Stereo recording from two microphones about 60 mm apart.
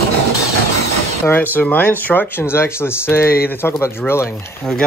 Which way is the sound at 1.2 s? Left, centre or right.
Left.